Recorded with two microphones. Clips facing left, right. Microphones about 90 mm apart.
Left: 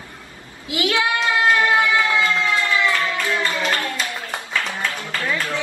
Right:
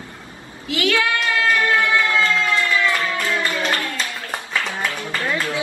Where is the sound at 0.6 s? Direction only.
20° left (ahead or behind).